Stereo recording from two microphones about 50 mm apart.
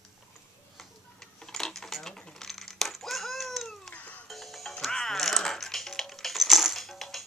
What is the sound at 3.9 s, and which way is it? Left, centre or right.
Music, left.